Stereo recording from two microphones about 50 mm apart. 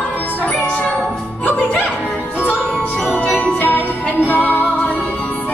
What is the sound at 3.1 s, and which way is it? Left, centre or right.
Jingle bell, left.